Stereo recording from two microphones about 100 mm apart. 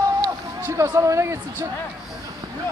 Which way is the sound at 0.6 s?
30° right (ahead or behind).